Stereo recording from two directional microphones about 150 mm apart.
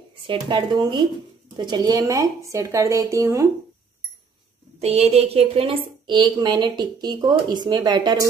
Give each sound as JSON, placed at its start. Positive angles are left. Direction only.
{"t": 0.3, "sound": "speech", "side_deg": -35}
{"t": 4.7, "sound": "a woman's voice", "side_deg": -45}